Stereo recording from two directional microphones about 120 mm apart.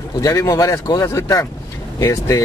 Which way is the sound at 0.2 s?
30° left (ahead or behind).